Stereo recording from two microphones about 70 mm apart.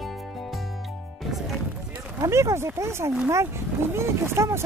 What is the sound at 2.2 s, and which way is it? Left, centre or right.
Speech, right.